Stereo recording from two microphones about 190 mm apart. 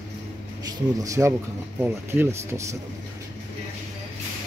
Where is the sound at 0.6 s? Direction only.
15° right (ahead or behind).